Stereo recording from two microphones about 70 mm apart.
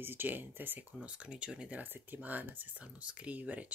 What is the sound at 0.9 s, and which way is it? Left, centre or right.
Speech, centre.